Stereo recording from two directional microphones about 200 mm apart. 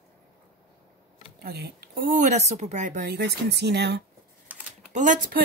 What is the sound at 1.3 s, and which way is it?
Speech, 50° right (ahead or behind).